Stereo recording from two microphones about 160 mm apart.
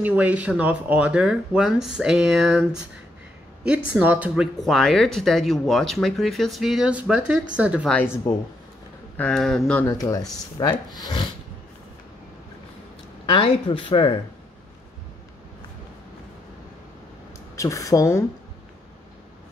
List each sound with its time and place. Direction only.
0.0 s a woman's voice: 10° right (ahead or behind)
8.3 s speech: 15° left (ahead or behind)
9.1 s speech: 5° left (ahead or behind)
9.8 s speech: 20° left (ahead or behind)
13.3 s speech: 35° left (ahead or behind)
17.6 s speech: 20° left (ahead or behind)